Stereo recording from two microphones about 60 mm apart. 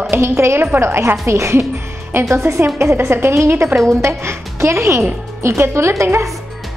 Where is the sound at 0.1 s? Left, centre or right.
Right.